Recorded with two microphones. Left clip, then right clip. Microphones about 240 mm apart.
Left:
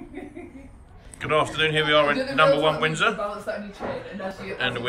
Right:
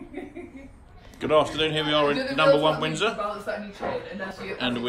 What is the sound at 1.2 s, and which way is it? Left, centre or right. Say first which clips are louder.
A man's voice: even; centre.